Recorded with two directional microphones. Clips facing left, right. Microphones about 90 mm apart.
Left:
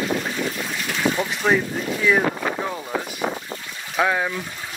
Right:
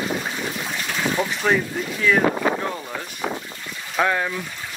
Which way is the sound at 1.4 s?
5° left (ahead or behind).